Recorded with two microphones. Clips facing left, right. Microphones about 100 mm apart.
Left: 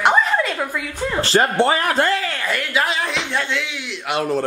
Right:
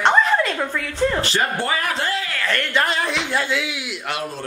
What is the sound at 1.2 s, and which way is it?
Speech, 30° left (ahead or behind).